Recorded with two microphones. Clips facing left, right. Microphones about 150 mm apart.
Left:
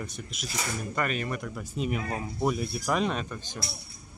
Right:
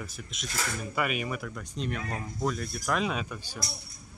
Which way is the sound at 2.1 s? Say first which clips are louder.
Left 3 dB; 25° left (ahead or behind).